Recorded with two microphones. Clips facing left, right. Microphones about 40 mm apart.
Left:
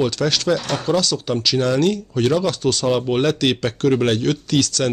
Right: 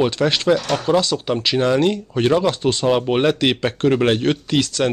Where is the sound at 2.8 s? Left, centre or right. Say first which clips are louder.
Right 2 dB; centre.